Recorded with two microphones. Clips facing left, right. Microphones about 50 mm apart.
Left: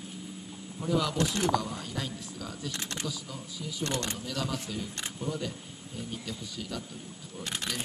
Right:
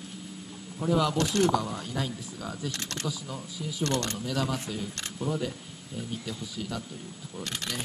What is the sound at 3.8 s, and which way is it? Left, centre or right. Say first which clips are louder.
Speech: right 4 dB; centre.